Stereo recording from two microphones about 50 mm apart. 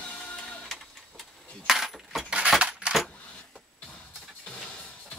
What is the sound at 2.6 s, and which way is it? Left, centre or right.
Coin, right.